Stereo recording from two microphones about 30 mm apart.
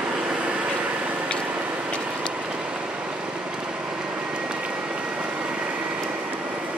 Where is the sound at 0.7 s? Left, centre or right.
Right.